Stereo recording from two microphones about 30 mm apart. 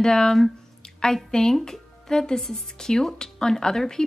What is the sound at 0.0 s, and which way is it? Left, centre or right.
A woman's voice, left.